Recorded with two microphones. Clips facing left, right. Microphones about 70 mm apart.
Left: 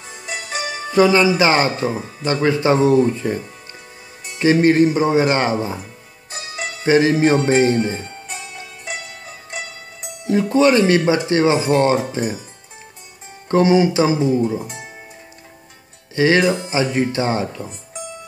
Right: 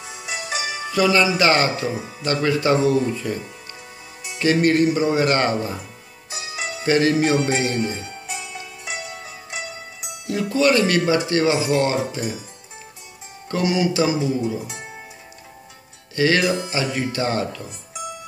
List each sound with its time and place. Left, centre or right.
0.9 s speech: left
4.4 s speech: left
6.8 s speech: left
10.2 s speech: left
13.5 s speech: left
16.2 s speech: left